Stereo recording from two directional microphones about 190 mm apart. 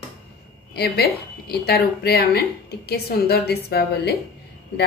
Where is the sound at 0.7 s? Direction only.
55° left (ahead or behind).